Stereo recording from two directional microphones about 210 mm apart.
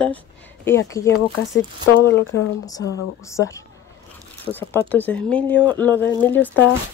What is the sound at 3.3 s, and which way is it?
Speech, 15° left (ahead or behind).